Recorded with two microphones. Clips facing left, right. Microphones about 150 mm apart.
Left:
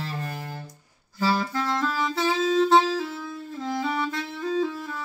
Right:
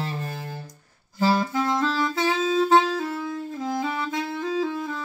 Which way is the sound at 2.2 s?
10° right (ahead or behind).